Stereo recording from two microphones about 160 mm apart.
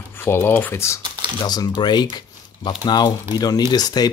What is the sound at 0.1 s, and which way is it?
Speech, 15° left (ahead or behind).